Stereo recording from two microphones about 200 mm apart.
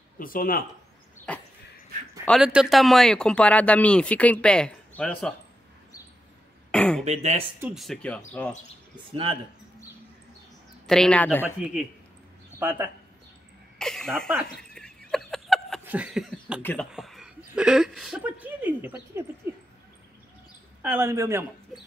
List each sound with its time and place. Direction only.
0.2 s speech: 45° left (ahead or behind)
1.3 s dog: 5° left (ahead or behind)
2.2 s speech: centre (ahead or behind)
6.7 s throat clearing: 5° left (ahead or behind)
7.1 s speech: 35° right (ahead or behind)
7.6 s speech: centre (ahead or behind)
9.1 s speech: 25° right (ahead or behind)
10.9 s speech: 5° left (ahead or behind)
12.5 s speech: 10° right (ahead or behind)
13.7 s a sound: centre (ahead or behind)
15.8 s cough: 5° right (ahead or behind)
16.6 s speech: centre (ahead or behind)
20.8 s a man's voice: 10° right (ahead or behind)